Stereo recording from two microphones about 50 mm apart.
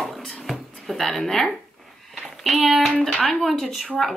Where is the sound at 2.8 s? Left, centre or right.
Centre.